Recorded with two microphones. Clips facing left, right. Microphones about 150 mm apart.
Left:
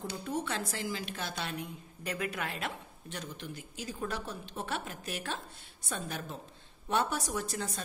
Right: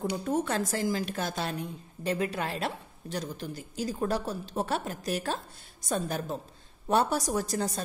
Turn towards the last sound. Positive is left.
turn(degrees=-40)  # may be behind; listen again after turning